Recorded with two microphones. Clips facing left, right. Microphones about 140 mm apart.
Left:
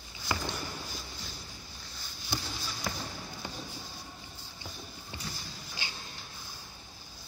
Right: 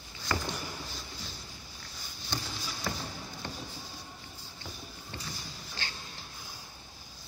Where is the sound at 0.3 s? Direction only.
15° left (ahead or behind).